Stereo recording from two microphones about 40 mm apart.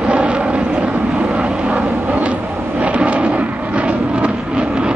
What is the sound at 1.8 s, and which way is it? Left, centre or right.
Vehicle, right.